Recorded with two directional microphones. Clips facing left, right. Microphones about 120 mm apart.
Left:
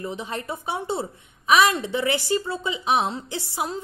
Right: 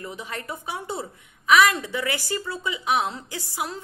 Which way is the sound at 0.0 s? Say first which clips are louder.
Left 4 dB; 25° left (ahead or behind).